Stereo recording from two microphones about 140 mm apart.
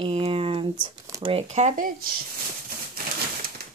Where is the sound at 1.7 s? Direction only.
75° right (ahead or behind).